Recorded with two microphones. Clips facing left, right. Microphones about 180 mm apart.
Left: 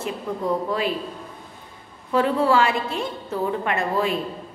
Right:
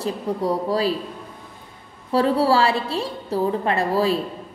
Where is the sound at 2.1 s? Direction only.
35° right (ahead or behind).